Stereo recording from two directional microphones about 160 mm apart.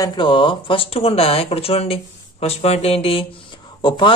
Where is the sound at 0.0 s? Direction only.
30° left (ahead or behind).